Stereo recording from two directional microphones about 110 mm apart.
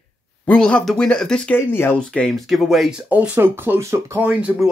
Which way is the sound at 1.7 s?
20° left (ahead or behind).